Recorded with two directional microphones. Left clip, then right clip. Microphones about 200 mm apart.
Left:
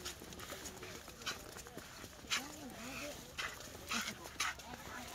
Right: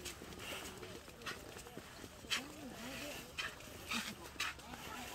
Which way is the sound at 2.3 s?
15° right (ahead or behind).